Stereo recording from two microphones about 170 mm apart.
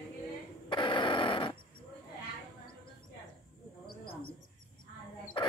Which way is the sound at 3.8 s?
30° left (ahead or behind).